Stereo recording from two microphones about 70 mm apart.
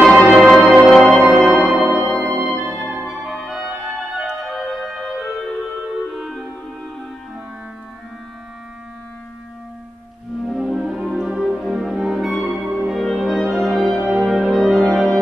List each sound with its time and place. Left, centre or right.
0.0 s music: centre
1.1 s music: centre
3.3 s music: centre
10.4 s music: centre